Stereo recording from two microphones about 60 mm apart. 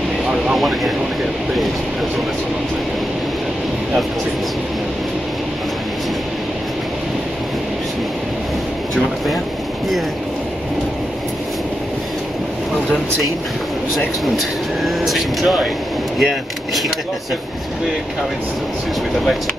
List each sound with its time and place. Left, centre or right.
0.6 s speech: centre
13.9 s speech: centre